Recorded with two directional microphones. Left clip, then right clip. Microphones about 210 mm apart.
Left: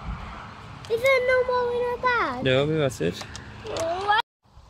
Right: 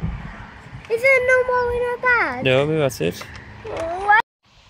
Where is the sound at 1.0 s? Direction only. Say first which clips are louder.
Right 5 dB; 35° right (ahead or behind).